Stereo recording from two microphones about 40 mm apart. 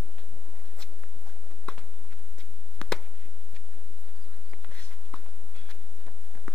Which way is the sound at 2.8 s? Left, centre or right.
Left.